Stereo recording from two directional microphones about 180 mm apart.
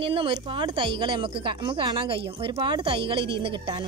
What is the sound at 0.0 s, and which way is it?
A woman's voice, 30° right (ahead or behind).